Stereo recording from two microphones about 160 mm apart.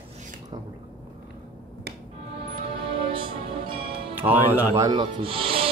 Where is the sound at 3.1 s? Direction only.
35° right (ahead or behind).